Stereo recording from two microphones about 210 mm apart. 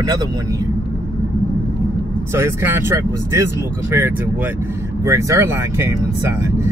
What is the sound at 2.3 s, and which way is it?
Speech, 10° right (ahead or behind).